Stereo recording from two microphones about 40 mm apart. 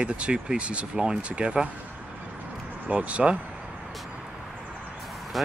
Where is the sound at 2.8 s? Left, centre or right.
Right.